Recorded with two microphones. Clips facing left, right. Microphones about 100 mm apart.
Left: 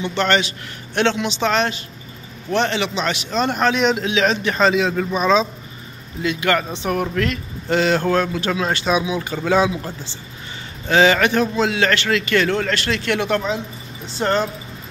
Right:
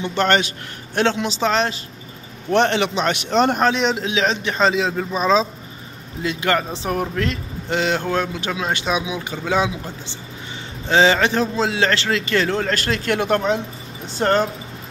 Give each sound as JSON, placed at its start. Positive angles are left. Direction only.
{"t": 0.0, "sound": "a man's voice", "side_deg": -45}
{"t": 2.5, "sound": "a man's voice", "side_deg": -55}
{"t": 3.5, "sound": "a man's voice", "side_deg": -30}
{"t": 10.9, "sound": "a man's voice", "side_deg": -25}